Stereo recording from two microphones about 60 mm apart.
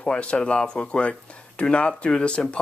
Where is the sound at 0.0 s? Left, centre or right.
Centre.